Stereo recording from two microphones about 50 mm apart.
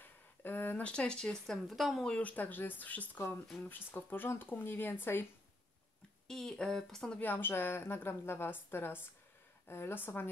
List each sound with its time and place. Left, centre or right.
0.0 s a sound: left
0.8 s speech: centre
1.7 s speech: centre
2.2 s a woman's voice: left
6.2 s speech: centre
7.2 s a woman's voice: left